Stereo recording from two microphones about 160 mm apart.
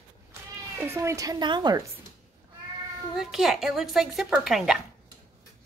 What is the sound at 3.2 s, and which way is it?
Speech, centre (ahead or behind).